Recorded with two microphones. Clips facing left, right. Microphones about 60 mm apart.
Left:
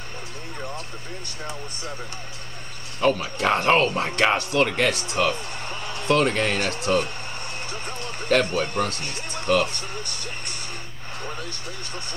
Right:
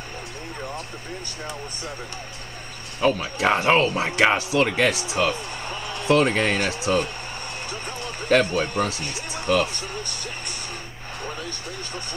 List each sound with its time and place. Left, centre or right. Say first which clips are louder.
3.0 s speech: even; centre
9.7 s speech: right 1 dB; left